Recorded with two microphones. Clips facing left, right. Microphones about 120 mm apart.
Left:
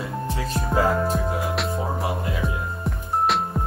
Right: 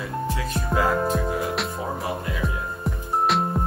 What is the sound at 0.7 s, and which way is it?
Music, centre (ahead or behind).